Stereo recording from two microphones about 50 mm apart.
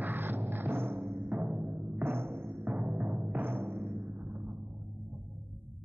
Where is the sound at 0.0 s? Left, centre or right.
Right.